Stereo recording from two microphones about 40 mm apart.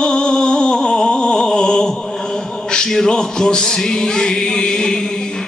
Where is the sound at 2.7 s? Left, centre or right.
Centre.